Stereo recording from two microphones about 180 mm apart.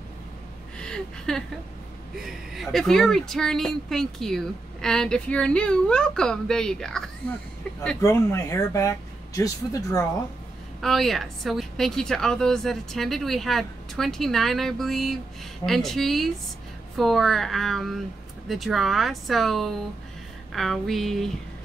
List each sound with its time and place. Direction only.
0.7 s speech: 5° left (ahead or behind)
8.0 s speech: 15° left (ahead or behind)
10.8 s speech: centre (ahead or behind)